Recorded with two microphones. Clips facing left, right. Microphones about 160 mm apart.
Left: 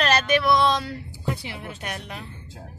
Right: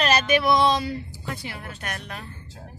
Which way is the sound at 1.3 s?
15° left (ahead or behind).